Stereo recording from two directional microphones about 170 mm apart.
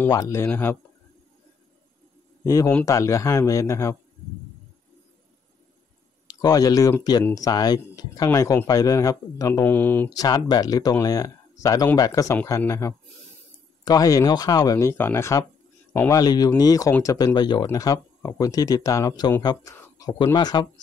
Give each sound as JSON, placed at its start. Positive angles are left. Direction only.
{"t": 0.1, "sound": "speech", "side_deg": 20}
{"t": 2.4, "sound": "a man's voice", "side_deg": 20}
{"t": 6.2, "sound": "speech", "side_deg": 20}